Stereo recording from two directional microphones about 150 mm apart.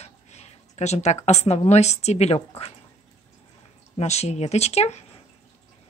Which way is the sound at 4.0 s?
45° left (ahead or behind).